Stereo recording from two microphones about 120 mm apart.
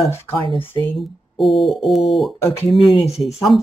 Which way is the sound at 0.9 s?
Centre (ahead or behind).